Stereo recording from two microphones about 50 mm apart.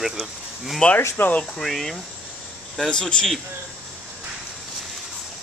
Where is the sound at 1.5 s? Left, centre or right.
Centre.